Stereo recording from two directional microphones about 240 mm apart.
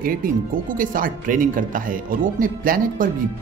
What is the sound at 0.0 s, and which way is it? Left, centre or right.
Speech, right.